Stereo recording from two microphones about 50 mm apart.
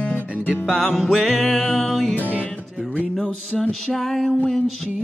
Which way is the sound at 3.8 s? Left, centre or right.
Centre.